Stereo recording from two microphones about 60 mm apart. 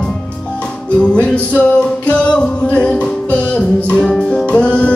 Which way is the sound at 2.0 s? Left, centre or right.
Left.